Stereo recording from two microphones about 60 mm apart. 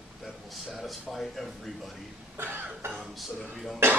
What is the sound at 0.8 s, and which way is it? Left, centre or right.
Speech, centre.